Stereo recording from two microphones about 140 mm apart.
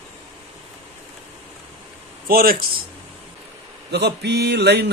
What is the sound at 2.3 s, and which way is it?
Speech, 90° right.